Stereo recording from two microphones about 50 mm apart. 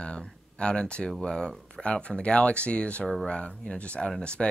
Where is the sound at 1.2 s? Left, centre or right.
Centre.